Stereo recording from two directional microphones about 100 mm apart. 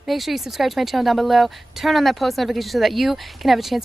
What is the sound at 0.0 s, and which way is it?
A woman's voice, centre (ahead or behind).